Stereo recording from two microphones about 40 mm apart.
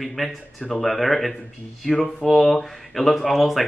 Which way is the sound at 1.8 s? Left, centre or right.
Centre.